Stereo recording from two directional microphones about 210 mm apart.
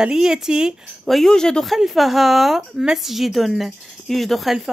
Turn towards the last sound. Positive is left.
turn(degrees=0)  # may be behind; listen again after turning